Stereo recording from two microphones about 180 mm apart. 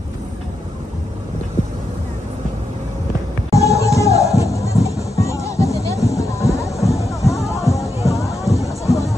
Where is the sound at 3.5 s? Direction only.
15° left (ahead or behind).